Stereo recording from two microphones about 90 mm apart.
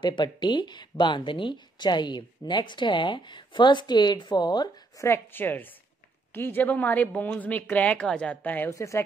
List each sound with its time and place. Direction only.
0.0 s speech: 55° left (ahead or behind)
4.9 s a woman's voice: 30° left (ahead or behind)
8.7 s a woman's voice: 35° left (ahead or behind)